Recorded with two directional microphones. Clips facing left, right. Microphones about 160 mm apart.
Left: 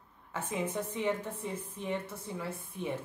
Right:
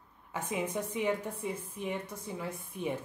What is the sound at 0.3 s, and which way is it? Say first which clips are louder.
Speech: right 1 dB; 15° right (ahead or behind).